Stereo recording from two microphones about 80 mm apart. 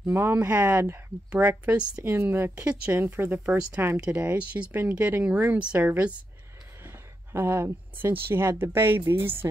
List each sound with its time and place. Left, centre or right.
0.1 s speech: right
2.0 s speech: right
7.3 s speech: right